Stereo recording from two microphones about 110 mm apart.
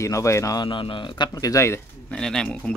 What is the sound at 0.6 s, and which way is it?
Speech, 45° left (ahead or behind).